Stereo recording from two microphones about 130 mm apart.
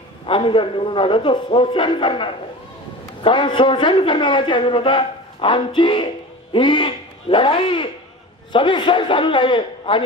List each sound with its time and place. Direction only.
0.3 s a man's voice: 40° left (ahead or behind)